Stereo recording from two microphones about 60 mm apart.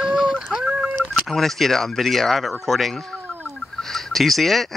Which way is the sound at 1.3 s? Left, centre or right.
Centre.